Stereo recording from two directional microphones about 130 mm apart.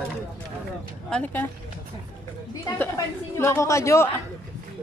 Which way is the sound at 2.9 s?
20° left (ahead or behind).